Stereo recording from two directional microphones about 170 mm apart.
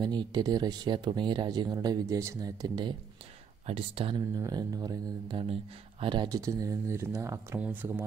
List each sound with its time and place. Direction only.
0.0 s speech: 25° right (ahead or behind)